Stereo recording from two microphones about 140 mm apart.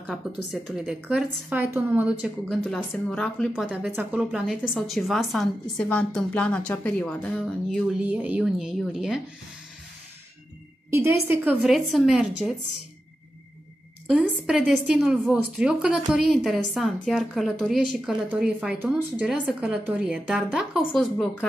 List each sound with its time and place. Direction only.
0.1 s a woman's voice: centre (ahead or behind)
2.4 s a woman's voice: 5° left (ahead or behind)
3.6 s a woman's voice: 10° right (ahead or behind); by 7.5 s 10° left (ahead or behind)
8.0 s a woman's voice: 10° right (ahead or behind)
10.9 s a woman's voice: 20° right (ahead or behind)
11.6 s a woman's voice: centre (ahead or behind)
14.4 s a woman's voice: 5° right (ahead or behind)